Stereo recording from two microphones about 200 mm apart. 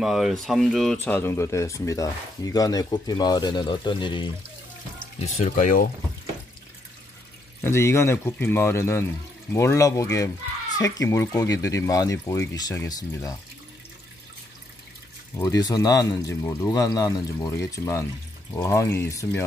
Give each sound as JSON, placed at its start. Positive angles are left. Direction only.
{"t": 0.0, "sound": "speech", "side_deg": 0}
{"t": 5.3, "sound": "speech", "side_deg": 40}
{"t": 7.6, "sound": "speech", "side_deg": 15}
{"t": 15.3, "sound": "speech", "side_deg": 15}